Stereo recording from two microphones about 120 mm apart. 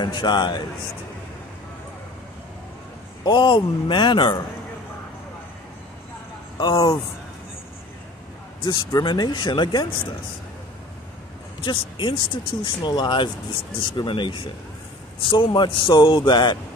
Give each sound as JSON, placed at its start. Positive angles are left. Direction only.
{"t": 0.0, "sound": "speech", "side_deg": 40}
{"t": 3.3, "sound": "speech", "side_deg": 40}
{"t": 6.6, "sound": "speech", "side_deg": 35}
{"t": 8.6, "sound": "speech", "side_deg": 35}
{"t": 11.6, "sound": "speech", "side_deg": 40}